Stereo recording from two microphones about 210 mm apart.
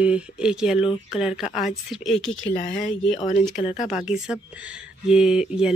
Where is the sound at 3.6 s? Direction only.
25° left (ahead or behind).